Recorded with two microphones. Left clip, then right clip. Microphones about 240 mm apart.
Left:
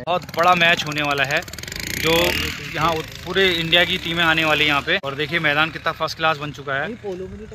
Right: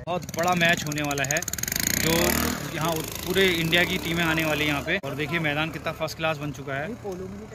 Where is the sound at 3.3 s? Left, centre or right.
Centre.